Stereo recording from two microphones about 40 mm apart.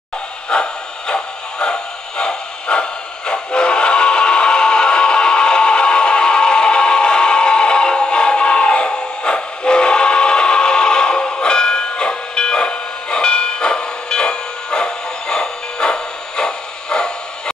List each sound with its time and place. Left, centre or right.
0.5 s music: left